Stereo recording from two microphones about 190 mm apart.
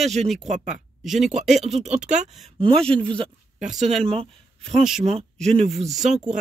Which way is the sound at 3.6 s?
40° right (ahead or behind).